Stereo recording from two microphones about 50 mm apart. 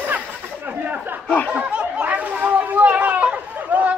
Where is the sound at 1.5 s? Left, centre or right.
Right.